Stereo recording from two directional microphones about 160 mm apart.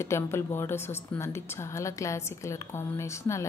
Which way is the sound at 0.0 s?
15° left (ahead or behind).